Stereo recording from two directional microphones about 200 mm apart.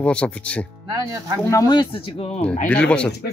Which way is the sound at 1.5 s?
20° left (ahead or behind).